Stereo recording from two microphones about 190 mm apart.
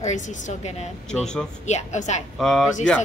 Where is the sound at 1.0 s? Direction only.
5° left (ahead or behind).